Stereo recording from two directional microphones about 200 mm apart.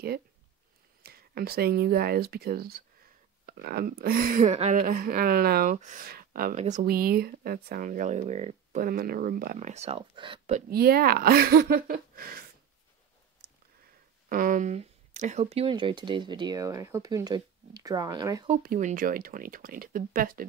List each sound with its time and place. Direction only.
1.0 s speech: 50° right (ahead or behind); by 8.8 s 35° right (ahead or behind)
8.8 s speech: 50° right (ahead or behind); by 10.6 s 30° right (ahead or behind)
10.7 s speech: 50° right (ahead or behind)
14.3 s speech: 40° right (ahead or behind); by 18.5 s 20° right (ahead or behind)
18.5 s speech: 45° right (ahead or behind)